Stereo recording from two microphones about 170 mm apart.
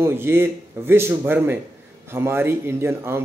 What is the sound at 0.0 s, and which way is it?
A man's voice, 15° right (ahead or behind).